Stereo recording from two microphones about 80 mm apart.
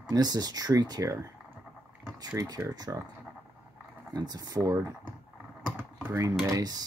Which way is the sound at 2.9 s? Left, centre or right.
Right.